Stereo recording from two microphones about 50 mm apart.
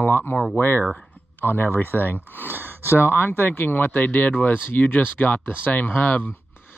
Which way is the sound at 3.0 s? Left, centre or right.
Left.